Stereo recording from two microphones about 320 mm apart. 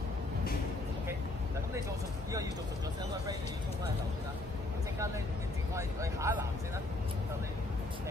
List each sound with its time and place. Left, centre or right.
5.8 s speech: centre